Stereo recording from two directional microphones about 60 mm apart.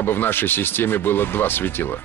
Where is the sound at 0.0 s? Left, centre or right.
Left.